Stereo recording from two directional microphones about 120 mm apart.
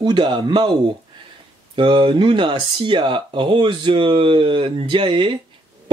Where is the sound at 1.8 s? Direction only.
40° right (ahead or behind).